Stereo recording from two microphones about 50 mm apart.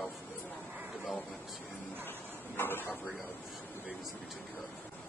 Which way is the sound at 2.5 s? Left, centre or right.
Left.